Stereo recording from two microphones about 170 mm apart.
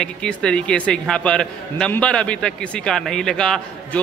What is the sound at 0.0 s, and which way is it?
A man's voice, 5° left (ahead or behind).